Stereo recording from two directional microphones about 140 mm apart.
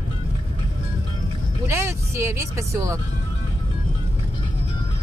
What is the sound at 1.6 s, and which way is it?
Speech, 20° right (ahead or behind).